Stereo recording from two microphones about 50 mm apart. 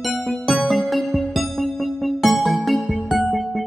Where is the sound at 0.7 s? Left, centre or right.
Centre.